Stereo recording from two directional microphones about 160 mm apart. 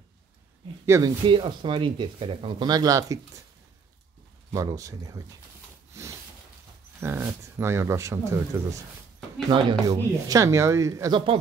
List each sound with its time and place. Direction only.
0.8 s speech: 20° right (ahead or behind)
1.2 s speech: 30° right (ahead or behind)
4.5 s speech: 20° right (ahead or behind)
5.9 s a sound: 20° right (ahead or behind)
7.0 s speech: 15° right (ahead or behind); by 11.3 s 30° right (ahead or behind)